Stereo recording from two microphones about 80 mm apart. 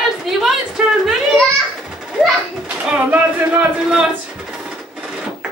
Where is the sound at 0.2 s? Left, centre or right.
Centre.